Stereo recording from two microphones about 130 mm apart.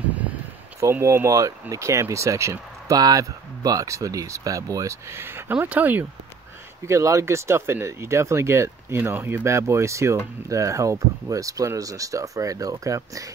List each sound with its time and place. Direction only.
0.7 s speech: 20° right (ahead or behind)